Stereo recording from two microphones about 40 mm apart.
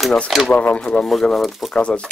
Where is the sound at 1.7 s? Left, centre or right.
Left.